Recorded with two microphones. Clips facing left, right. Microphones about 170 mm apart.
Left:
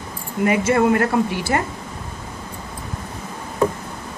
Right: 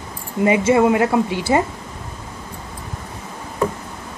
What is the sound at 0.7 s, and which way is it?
Speech, 10° right (ahead or behind).